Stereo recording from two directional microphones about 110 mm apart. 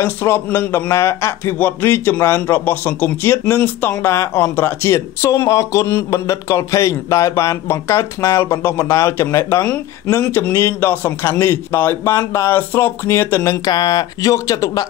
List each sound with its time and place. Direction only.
0.0 s speech: 20° left (ahead or behind)